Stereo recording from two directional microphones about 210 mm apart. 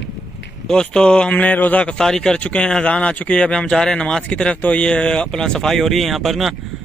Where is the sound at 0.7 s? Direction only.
5° left (ahead or behind).